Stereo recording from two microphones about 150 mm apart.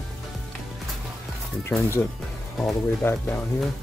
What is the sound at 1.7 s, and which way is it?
Speech, 15° left (ahead or behind).